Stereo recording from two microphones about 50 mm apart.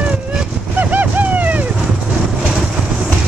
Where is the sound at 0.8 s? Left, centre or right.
Right.